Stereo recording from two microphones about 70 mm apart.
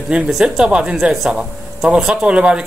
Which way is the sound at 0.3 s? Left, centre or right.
Centre.